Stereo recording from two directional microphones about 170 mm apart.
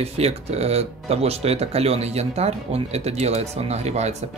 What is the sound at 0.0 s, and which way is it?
Speech, 35° right (ahead or behind).